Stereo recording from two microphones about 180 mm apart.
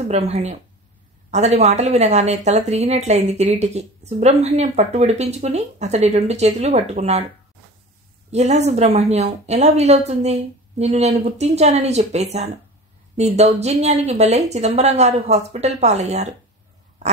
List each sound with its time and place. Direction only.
0.1 s speech: 40° right (ahead or behind)
8.3 s speech: 40° right (ahead or behind)